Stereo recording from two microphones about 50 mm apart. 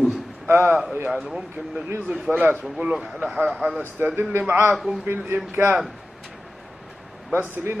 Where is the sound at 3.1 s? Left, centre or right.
Centre.